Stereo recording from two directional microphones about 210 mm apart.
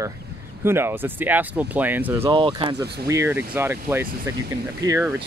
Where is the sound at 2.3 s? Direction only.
25° right (ahead or behind).